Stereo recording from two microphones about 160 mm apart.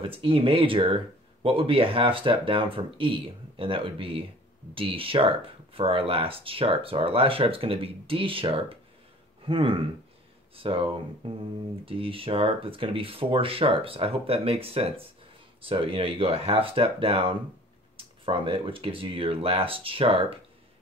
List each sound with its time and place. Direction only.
0.0 s speech: 35° right (ahead or behind)